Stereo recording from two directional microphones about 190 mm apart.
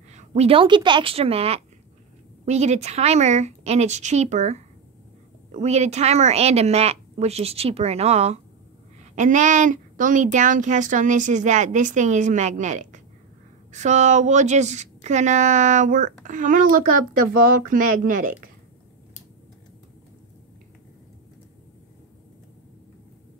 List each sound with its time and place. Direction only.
0.1 s speech: 35° right (ahead or behind)